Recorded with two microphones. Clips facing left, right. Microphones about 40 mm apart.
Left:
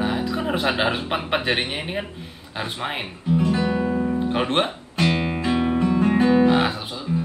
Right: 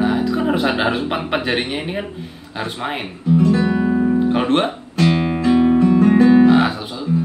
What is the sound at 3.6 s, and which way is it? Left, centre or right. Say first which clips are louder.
Music: right 5 dB; centre.